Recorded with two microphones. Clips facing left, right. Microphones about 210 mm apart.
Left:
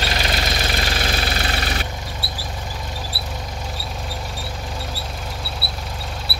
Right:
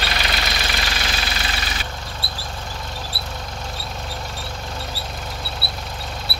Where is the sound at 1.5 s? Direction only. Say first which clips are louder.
Left 5 dB; 60° left (ahead or behind).